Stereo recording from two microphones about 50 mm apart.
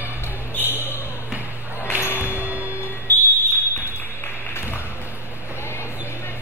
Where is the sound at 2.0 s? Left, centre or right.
Left.